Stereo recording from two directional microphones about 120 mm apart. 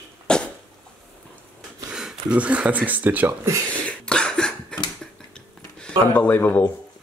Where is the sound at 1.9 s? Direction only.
5° right (ahead or behind).